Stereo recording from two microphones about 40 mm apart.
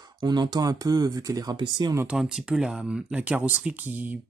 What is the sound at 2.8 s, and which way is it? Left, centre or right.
Speech, right.